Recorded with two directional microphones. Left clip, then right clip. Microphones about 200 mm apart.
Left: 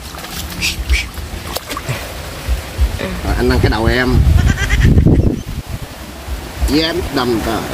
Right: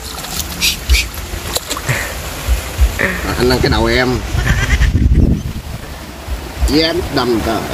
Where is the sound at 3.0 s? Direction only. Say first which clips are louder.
Right 8 dB; 10° right (ahead or behind).